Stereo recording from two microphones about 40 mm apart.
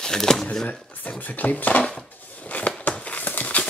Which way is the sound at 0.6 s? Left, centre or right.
Left.